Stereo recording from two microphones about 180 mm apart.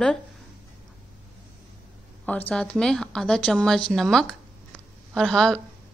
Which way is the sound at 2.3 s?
10° left (ahead or behind).